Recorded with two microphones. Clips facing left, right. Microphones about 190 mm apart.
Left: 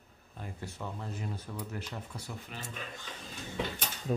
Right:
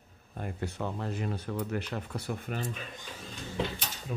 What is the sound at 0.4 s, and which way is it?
Speech, 65° right (ahead or behind).